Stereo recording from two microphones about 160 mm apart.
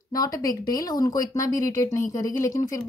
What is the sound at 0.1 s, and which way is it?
Speech, 20° left (ahead or behind).